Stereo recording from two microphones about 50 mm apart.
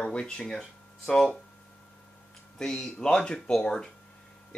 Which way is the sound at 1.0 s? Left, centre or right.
Centre.